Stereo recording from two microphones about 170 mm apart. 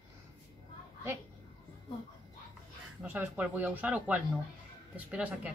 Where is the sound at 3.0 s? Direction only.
10° right (ahead or behind).